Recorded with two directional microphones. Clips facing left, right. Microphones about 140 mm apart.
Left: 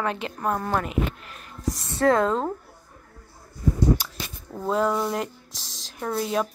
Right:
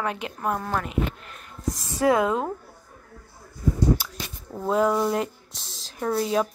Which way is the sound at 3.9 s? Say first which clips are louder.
Even; 5° right (ahead or behind).